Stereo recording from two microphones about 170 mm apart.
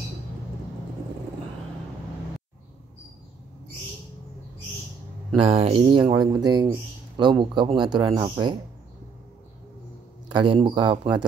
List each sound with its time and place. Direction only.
5.4 s a man's voice: 35° right (ahead or behind)
10.3 s a man's voice: 30° right (ahead or behind)